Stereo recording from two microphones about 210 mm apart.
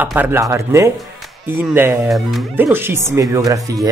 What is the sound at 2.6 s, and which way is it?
Speech, 10° right (ahead or behind).